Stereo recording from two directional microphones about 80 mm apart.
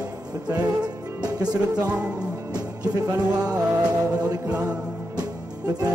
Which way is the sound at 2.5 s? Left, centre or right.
Right.